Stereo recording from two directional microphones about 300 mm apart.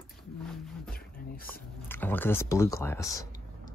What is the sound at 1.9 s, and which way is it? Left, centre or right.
Speech, centre.